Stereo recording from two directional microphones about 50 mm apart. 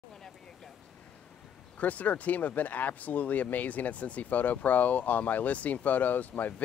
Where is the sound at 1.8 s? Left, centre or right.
Left.